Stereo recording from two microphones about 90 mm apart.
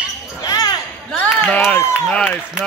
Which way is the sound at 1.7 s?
15° left (ahead or behind).